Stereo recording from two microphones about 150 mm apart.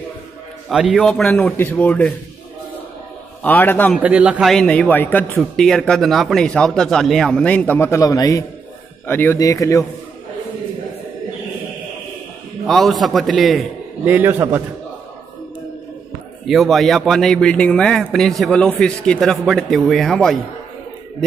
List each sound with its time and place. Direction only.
0.7 s a man's voice: 5° right (ahead or behind)
3.4 s a man's voice: 10° left (ahead or behind)
4.0 s a man's voice: 10° right (ahead or behind); by 9.8 s 20° left (ahead or behind)
12.6 s a man's voice: centre (ahead or behind)
14.0 s a man's voice: 15° right (ahead or behind)
16.4 s a man's voice: centre (ahead or behind)